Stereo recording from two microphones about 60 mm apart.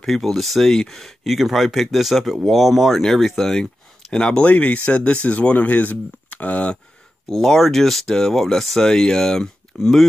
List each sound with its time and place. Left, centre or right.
0.0 s speech: centre; by 6.8 s left
7.2 s speech: centre